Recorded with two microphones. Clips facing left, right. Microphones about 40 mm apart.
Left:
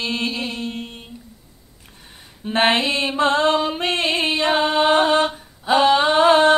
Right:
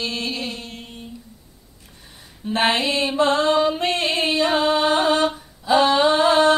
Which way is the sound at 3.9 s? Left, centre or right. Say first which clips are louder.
Left 1 dB; left.